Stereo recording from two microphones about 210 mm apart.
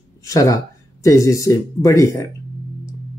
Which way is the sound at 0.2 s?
15° left (ahead or behind).